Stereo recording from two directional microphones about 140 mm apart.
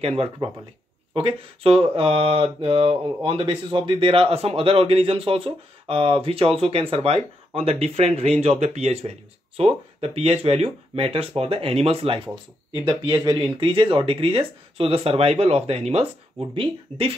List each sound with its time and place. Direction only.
0.0 s speech: 45° right (ahead or behind)